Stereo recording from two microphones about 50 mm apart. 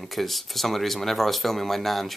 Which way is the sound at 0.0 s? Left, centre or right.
Centre.